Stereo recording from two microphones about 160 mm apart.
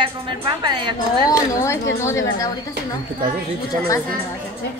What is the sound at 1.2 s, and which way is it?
A woman's voice, 20° left (ahead or behind).